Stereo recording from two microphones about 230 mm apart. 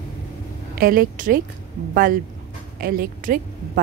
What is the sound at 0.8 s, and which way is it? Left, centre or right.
Speech, right.